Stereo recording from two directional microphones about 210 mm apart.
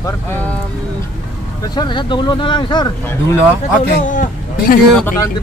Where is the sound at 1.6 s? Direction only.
20° left (ahead or behind).